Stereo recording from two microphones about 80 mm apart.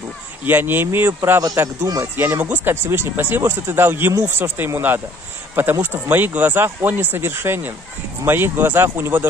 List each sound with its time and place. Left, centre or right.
0.5 s speech: right